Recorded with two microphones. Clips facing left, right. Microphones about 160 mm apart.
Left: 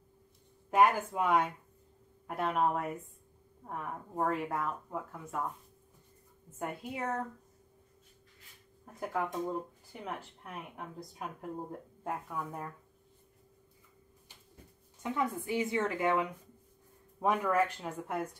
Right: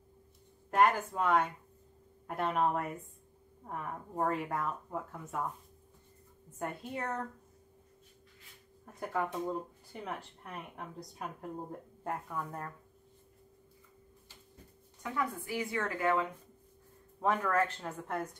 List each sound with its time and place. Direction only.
0.7 s speech: 10° left (ahead or behind)
6.6 s speech: 10° left (ahead or behind)
9.0 s speech: 10° left (ahead or behind)
15.0 s speech: 20° left (ahead or behind)